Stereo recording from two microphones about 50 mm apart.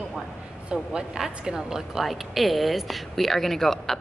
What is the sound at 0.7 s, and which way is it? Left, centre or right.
A woman's voice, centre.